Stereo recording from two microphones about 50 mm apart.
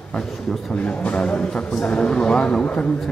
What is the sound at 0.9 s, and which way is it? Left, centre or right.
Speech, left.